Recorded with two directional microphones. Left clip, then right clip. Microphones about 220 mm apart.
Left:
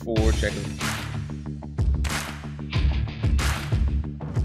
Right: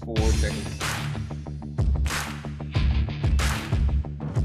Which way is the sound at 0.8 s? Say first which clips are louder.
Right 1 dB; centre (ahead or behind).